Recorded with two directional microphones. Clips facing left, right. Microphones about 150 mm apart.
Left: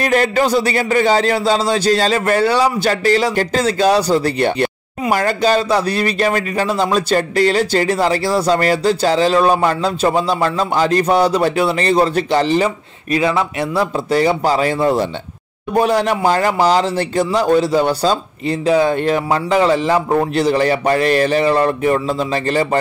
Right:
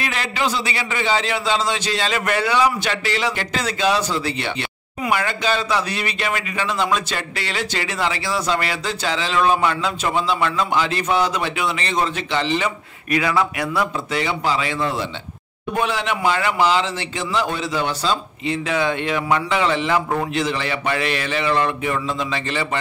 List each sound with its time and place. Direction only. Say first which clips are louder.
0.0 s speech: left 9 dB; 45° left (ahead or behind)